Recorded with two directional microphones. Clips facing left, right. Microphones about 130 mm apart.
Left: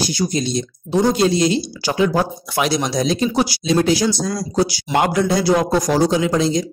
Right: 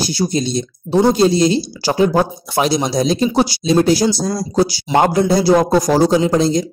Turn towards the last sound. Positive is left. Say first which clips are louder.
# right 3 dB
turn(degrees=-35)  # may be behind; listen again after turning